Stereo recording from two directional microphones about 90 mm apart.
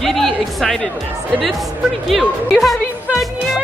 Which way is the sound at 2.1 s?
Centre (ahead or behind).